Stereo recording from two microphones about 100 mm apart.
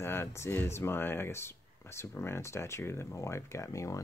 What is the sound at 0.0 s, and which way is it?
Speech, 25° left (ahead or behind).